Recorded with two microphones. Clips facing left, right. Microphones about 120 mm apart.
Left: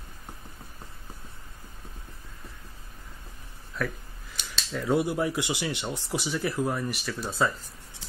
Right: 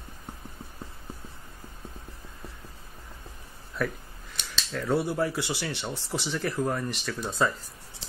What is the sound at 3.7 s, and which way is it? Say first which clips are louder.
Speech: right 2 dB; centre (ahead or behind).